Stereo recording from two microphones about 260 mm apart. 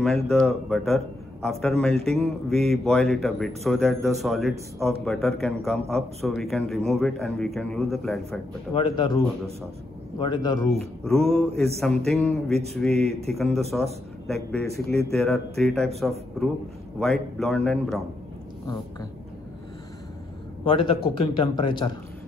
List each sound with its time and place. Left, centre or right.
0.0 s speech: centre
8.7 s a man's voice: centre
10.8 s speech: centre
20.6 s speech: left